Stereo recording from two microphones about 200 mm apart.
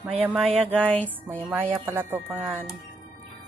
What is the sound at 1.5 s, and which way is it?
Speech, 10° right (ahead or behind).